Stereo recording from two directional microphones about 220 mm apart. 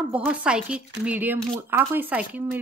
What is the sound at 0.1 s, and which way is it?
A woman's voice, 5° right (ahead or behind).